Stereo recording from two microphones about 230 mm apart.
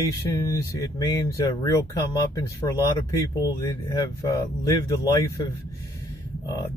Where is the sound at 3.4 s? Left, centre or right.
Centre.